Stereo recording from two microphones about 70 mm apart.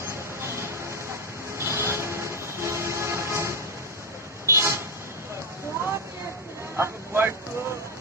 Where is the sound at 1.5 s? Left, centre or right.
Right.